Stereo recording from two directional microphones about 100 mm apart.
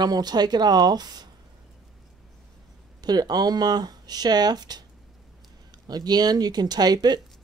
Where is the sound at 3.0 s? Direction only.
40° right (ahead or behind).